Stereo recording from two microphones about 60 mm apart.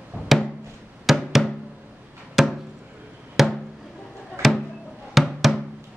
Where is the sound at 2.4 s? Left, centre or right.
Centre.